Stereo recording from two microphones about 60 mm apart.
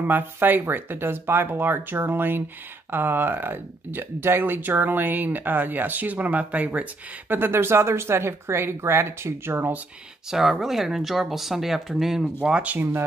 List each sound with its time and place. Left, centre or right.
0.0 s speech: right
7.3 s speech: right
10.3 s speech: centre